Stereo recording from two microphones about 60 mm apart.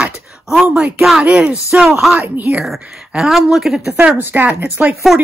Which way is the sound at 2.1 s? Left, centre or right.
Right.